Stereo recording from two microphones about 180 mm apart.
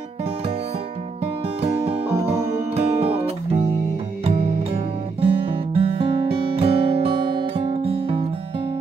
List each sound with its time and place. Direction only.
1.6 s music: 35° right (ahead or behind)